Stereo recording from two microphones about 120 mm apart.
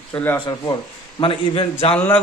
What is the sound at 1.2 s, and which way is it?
Speech, 50° left (ahead or behind).